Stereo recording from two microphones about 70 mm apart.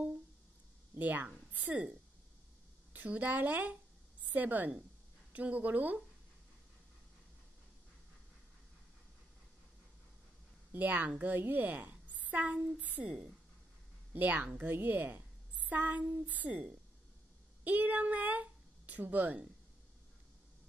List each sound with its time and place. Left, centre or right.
0.9 s a woman's voice: right
10.7 s a woman's voice: right
14.1 s a woman's voice: right